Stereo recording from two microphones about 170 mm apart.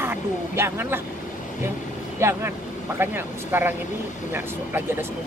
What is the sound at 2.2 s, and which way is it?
Speech, 15° right (ahead or behind).